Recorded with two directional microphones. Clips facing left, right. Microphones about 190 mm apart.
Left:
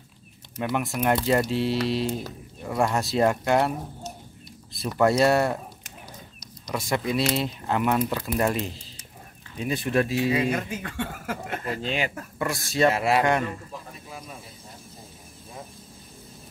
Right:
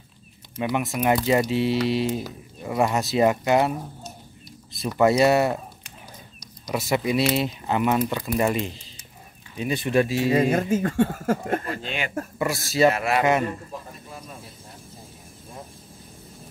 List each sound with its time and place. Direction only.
0.6 s speech: centre (ahead or behind)
4.8 s speech: 5° right (ahead or behind)
6.6 s speech: 5° right (ahead or behind)
10.7 s speech: 45° right (ahead or behind)
11.8 s speech: 35° left (ahead or behind)
12.4 s speech: 5° right (ahead or behind)
12.9 s speech: 25° left (ahead or behind)
13.2 s speech: 5° right (ahead or behind)